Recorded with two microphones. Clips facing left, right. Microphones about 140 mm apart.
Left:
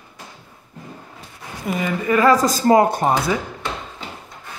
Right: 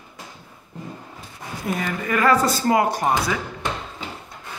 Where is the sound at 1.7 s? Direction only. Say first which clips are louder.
Left 2 dB; centre (ahead or behind).